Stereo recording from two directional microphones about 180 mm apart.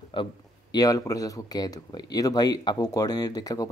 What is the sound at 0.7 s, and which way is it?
Speech, 20° left (ahead or behind).